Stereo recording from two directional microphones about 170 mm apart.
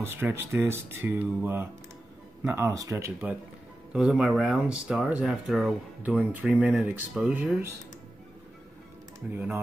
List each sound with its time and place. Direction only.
0.0 s speech: 15° right (ahead or behind)
3.9 s speech: 5° right (ahead or behind)
9.3 s speech: 10° right (ahead or behind)